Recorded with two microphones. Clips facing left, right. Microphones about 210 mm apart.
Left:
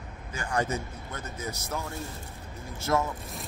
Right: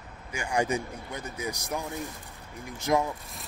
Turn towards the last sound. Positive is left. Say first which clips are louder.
# right 1 dB
turn(degrees=-15)  # may be behind; listen again after turning